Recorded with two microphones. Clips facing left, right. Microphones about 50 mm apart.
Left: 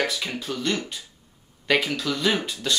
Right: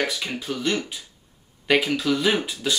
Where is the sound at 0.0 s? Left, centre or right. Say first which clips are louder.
Even; centre.